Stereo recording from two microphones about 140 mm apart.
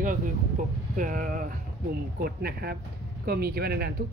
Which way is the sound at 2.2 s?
90° right.